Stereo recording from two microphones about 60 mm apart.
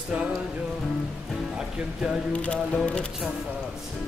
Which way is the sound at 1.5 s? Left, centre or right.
Centre.